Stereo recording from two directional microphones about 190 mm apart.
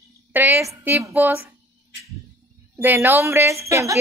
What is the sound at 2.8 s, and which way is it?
Speech, 10° right (ahead or behind).